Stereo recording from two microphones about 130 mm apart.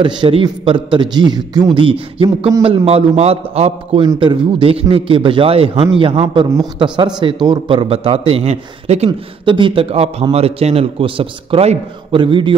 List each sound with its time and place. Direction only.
0.0 s a man's voice: 40° right (ahead or behind)
4.0 s a man's voice: 35° right (ahead or behind); by 9.1 s 55° right (ahead or behind)
9.4 s a man's voice: 40° right (ahead or behind)
12.2 s a man's voice: 40° right (ahead or behind)